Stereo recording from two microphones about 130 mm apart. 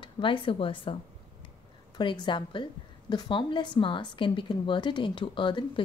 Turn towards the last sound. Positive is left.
turn(degrees=40)  # may be behind; listen again after turning